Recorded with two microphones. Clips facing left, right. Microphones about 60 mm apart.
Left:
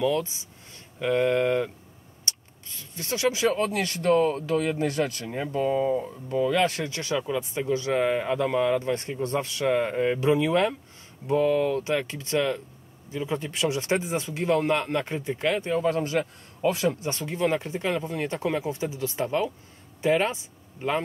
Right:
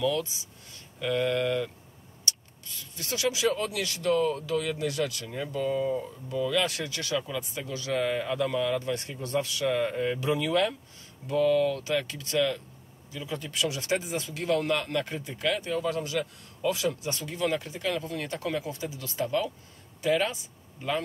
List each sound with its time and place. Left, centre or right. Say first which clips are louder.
0.0 s speech: left 3 dB; left